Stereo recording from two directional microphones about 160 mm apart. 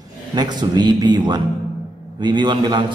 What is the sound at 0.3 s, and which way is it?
A man's voice, 25° right (ahead or behind).